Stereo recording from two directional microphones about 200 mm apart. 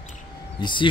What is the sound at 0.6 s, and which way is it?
Speech, 25° left (ahead or behind).